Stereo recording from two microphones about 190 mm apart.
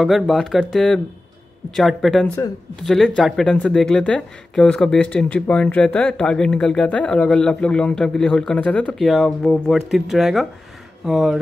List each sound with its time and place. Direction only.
0.0 s speech: centre (ahead or behind)